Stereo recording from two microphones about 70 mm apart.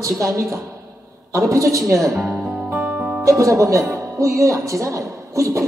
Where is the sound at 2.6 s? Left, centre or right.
Right.